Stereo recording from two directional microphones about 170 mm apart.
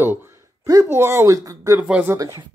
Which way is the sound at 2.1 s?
20° right (ahead or behind).